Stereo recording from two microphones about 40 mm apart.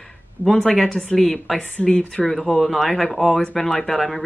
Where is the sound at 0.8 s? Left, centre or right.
Left.